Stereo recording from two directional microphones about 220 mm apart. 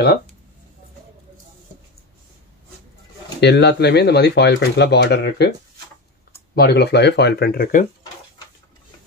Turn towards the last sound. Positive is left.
turn(degrees=40)  # may be behind; listen again after turning